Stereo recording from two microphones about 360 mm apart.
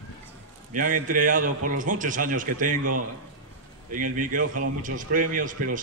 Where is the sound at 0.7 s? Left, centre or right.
Right.